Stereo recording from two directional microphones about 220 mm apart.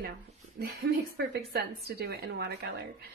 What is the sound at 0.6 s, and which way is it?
A woman's voice, 45° right (ahead or behind).